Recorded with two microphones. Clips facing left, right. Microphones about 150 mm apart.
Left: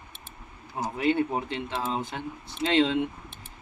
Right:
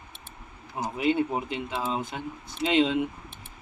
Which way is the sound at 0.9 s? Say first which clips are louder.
Even; 15° right (ahead or behind).